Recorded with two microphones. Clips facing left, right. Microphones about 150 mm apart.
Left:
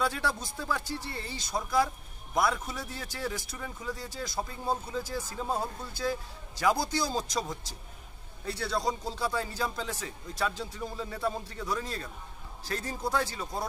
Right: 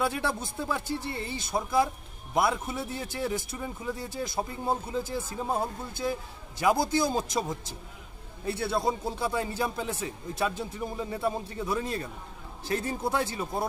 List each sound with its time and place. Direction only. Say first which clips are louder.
0.0 s speech: right 2 dB; 25° right (ahead or behind)